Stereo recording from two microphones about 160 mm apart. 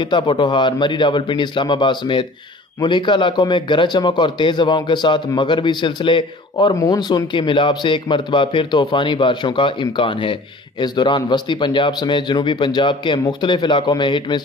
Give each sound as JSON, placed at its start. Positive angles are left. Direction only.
{"t": 0.0, "sound": "a man's voice", "side_deg": 30}